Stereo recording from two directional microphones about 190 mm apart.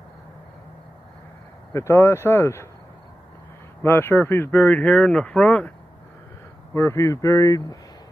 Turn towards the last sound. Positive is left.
turn(degrees=20)  # may be behind; listen again after turning